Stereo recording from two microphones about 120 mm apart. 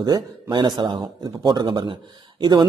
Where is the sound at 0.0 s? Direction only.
35° right (ahead or behind).